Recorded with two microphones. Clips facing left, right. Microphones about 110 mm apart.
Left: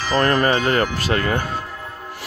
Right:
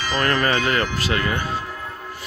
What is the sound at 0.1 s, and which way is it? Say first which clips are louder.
Speech: left 4 dB; 35° left (ahead or behind).